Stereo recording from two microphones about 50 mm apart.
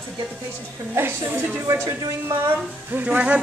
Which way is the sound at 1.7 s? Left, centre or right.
Right.